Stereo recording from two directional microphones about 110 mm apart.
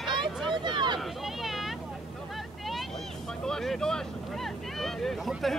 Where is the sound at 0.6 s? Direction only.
45° right (ahead or behind).